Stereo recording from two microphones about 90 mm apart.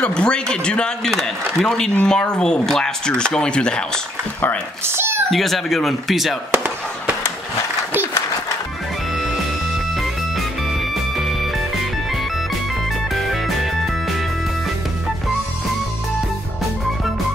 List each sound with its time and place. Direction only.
0.0 s a man's voice: 10° left (ahead or behind)
4.8 s a child's voice: 30° right (ahead or behind)
5.3 s speech: centre (ahead or behind)
6.5 s chop: 25° right (ahead or behind)
11.1 s music: centre (ahead or behind)
13.1 s music: centre (ahead or behind)